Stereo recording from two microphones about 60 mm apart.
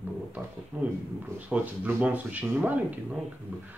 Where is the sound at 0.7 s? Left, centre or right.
Right.